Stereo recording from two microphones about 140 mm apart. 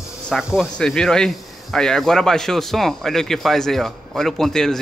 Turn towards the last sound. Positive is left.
turn(degrees=0)  # may be behind; listen again after turning